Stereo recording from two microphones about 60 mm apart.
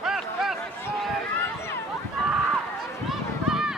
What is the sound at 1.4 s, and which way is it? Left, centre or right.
Run, left.